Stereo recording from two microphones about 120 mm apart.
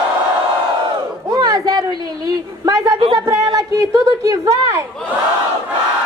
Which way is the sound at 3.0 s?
45° right (ahead or behind).